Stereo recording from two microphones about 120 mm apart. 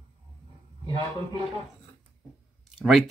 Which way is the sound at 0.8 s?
40° right (ahead or behind).